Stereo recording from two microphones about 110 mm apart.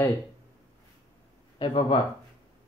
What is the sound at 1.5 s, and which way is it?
Speech, 50° left (ahead or behind).